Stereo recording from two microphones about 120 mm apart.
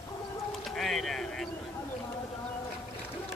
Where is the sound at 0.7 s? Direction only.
Centre (ahead or behind).